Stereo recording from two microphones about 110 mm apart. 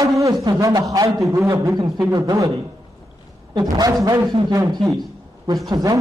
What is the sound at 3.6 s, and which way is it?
A man's voice, 35° right (ahead or behind).